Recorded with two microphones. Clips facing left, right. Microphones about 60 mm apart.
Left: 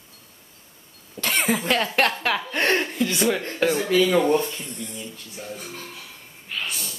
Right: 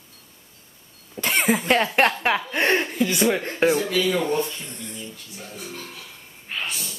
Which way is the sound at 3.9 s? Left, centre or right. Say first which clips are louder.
Left 4 dB; left.